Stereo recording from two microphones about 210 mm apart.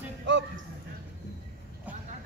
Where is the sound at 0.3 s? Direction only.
55° right (ahead or behind).